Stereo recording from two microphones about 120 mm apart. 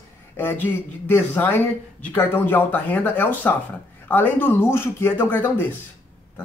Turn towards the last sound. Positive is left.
turn(degrees=15)  # may be behind; listen again after turning